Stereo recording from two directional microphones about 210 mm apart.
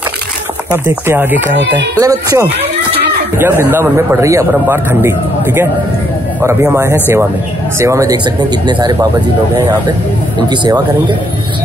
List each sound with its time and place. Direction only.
0.8 s a man's voice: 10° right (ahead or behind)
10.5 s speech: 20° right (ahead or behind)